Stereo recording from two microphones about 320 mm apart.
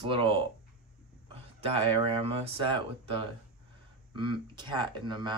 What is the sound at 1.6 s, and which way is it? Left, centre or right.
Speech, centre.